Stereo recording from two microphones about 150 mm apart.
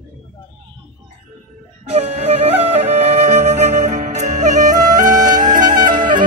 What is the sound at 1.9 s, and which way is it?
Music, 45° right (ahead or behind).